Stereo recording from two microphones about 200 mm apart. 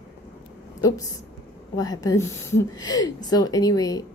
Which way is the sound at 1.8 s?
20° left (ahead or behind).